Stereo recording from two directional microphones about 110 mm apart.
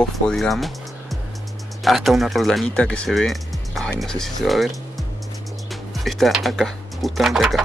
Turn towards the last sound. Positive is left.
turn(degrees=0)  # may be behind; listen again after turning